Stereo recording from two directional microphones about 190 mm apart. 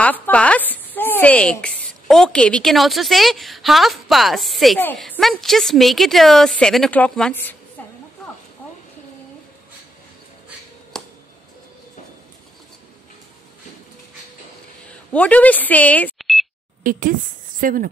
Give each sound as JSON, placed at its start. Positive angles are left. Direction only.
{"t": 0.0, "sound": "speech", "side_deg": 5}
{"t": 10.9, "sound": "a sound", "side_deg": 5}
{"t": 15.1, "sound": "speech", "side_deg": 5}
{"t": 16.8, "sound": "speech", "side_deg": -45}